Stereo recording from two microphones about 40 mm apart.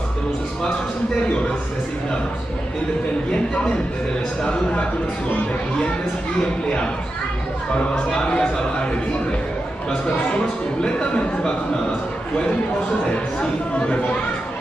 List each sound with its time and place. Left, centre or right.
4.4 s a man's voice: left
7.9 s a man's voice: left
9.8 s a man's voice: left
13.1 s a man's voice: left